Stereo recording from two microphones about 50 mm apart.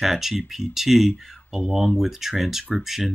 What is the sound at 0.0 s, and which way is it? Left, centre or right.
Speech, centre.